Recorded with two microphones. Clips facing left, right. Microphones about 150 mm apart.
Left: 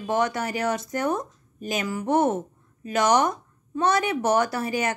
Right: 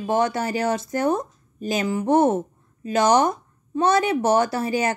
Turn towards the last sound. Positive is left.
turn(degrees=-30)  # may be behind; listen again after turning